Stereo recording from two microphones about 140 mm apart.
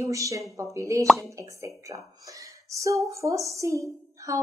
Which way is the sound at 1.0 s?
Centre (ahead or behind).